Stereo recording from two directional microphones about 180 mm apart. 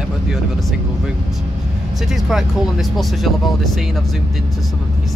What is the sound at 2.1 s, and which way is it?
Speech, centre (ahead or behind).